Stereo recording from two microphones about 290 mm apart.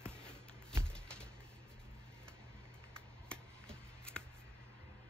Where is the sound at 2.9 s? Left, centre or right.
Centre.